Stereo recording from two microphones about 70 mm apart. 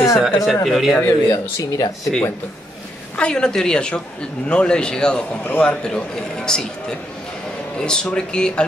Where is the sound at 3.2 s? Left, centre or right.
Centre.